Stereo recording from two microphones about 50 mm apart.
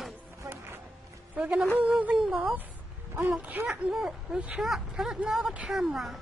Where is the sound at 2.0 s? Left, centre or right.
Right.